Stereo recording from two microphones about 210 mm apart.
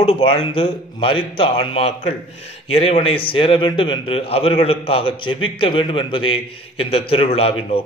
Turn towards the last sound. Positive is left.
turn(degrees=25)  # may be behind; listen again after turning